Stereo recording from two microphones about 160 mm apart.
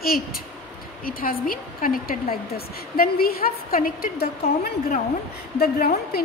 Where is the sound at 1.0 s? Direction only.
65° left (ahead or behind).